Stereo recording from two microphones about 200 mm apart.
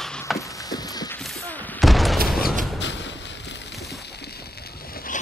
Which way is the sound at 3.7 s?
Centre (ahead or behind).